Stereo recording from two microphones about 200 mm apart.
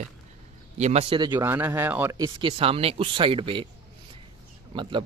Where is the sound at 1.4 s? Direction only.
10° right (ahead or behind).